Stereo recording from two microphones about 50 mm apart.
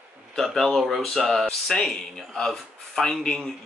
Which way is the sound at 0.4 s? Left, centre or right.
Centre.